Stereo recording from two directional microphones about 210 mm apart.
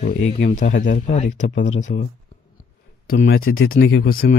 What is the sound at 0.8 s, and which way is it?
Speech, 40° left (ahead or behind).